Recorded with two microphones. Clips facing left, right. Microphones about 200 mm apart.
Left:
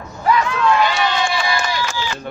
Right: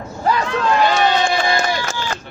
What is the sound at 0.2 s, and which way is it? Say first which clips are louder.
Run: left 1 dB; 35° right (ahead or behind).